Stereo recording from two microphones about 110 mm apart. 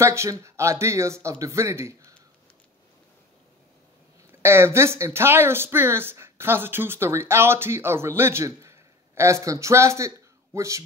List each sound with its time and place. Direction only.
0.0 s speech: 25° right (ahead or behind)
4.3 s speech: 20° right (ahead or behind)